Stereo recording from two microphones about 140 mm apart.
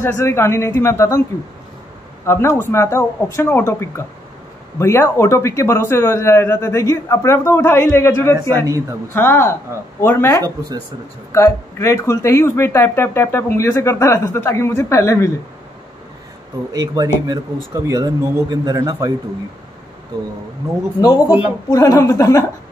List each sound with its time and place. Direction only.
0.0 s speech: 20° left (ahead or behind)
2.2 s speech: 15° left (ahead or behind)
8.6 s speech: 25° right (ahead or behind)
9.1 s speech: 15° left (ahead or behind)
16.7 s speech: 25° right (ahead or behind)
21.0 s speech: 25° left (ahead or behind)